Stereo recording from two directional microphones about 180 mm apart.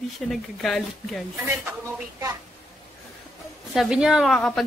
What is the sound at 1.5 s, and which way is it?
Speech, 10° right (ahead or behind).